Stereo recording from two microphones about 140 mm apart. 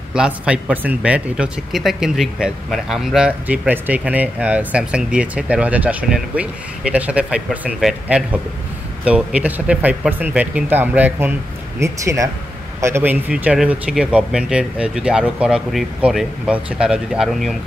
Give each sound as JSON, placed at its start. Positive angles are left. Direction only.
{"t": 0.1, "sound": "speech", "side_deg": -5}